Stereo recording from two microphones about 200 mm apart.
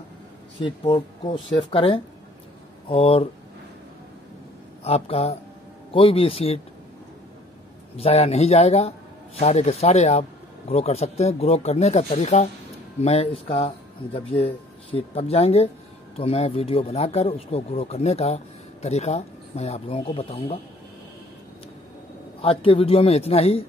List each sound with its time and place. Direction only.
0.6 s speech: 25° left (ahead or behind)
4.8 s speech: 30° left (ahead or behind)
8.0 s speech: 30° left (ahead or behind)
22.4 s speech: 30° left (ahead or behind)